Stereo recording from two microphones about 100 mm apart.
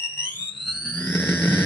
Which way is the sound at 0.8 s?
15° left (ahead or behind).